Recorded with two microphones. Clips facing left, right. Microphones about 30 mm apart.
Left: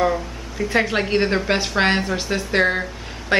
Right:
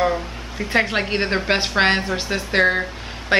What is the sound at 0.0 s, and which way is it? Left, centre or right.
Speech, centre.